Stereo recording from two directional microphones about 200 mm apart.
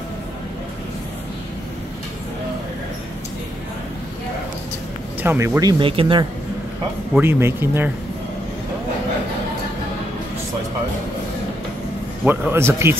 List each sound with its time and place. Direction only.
5.2 s speech: 10° right (ahead or behind); by 6.2 s 25° right (ahead or behind)
7.2 s speech: 10° right (ahead or behind)
12.3 s speech: 10° right (ahead or behind)